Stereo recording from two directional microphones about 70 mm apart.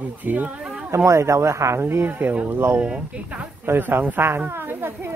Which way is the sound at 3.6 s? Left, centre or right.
Right.